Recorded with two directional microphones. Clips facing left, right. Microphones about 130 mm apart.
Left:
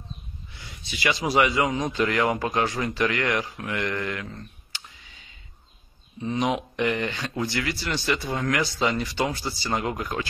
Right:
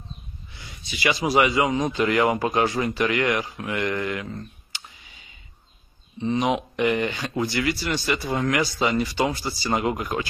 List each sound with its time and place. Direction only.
1.0 s speech: 5° right (ahead or behind)
4.7 s clicking: 15° right (ahead or behind)
6.1 s speech: centre (ahead or behind)